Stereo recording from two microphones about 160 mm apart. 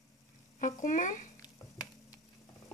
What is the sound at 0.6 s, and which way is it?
Speech, 55° left (ahead or behind).